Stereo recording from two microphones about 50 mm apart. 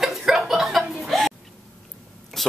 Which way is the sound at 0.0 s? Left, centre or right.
Centre.